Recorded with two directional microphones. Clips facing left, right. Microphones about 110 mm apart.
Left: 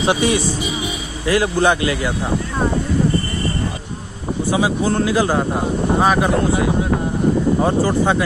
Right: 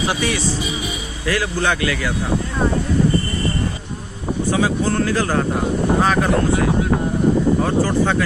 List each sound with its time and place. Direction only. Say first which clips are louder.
0.0 s speech: left 4 dB; 20° left (ahead or behind)
4.5 s speech: left 1 dB; 15° left (ahead or behind)
7.6 s speech: left 2 dB; 15° left (ahead or behind)